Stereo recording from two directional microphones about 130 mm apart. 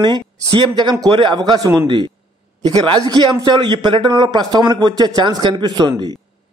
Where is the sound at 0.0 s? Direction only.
35° right (ahead or behind).